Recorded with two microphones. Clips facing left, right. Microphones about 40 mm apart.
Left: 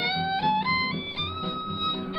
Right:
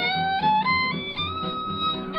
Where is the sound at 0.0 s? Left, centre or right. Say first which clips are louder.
Right 3 dB; centre.